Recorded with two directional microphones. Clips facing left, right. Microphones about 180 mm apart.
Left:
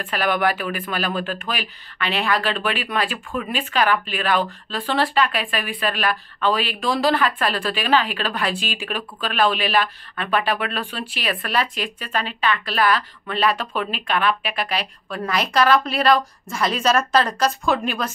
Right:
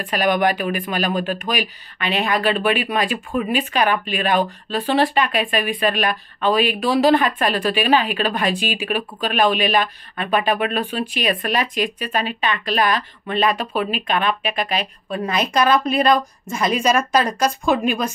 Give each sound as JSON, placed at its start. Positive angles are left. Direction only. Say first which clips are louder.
{"t": 0.0, "sound": "speech", "louder": "right 3 dB", "side_deg": -15}